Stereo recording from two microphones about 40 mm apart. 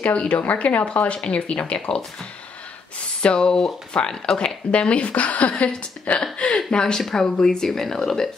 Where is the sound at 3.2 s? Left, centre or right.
Left.